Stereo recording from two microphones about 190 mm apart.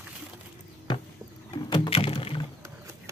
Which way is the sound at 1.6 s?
25° left (ahead or behind).